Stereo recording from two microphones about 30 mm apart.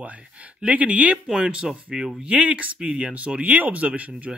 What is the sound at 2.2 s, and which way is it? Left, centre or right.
Speech, right.